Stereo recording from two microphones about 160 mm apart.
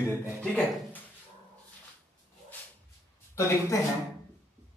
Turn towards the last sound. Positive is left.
turn(degrees=20)  # may be behind; listen again after turning